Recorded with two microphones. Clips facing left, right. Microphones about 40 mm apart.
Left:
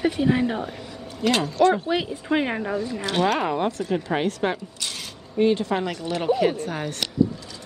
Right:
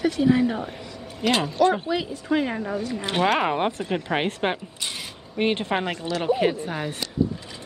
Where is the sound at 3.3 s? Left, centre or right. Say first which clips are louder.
Right 1 dB; right.